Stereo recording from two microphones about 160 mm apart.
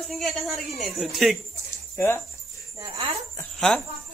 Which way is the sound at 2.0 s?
15° left (ahead or behind).